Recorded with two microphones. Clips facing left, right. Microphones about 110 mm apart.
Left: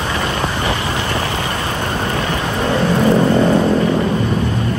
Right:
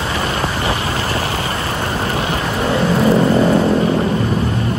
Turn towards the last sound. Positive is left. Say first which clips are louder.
# even
turn(degrees=0)  # may be behind; listen again after turning